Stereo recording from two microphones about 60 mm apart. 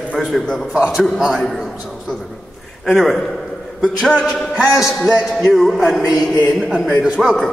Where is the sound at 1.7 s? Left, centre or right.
Centre.